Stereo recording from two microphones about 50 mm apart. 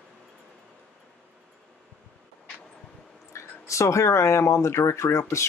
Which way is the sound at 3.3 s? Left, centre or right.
Left.